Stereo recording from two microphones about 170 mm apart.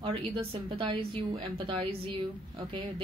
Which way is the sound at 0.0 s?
35° right (ahead or behind).